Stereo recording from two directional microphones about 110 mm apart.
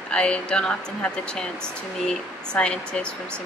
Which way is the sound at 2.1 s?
5° left (ahead or behind).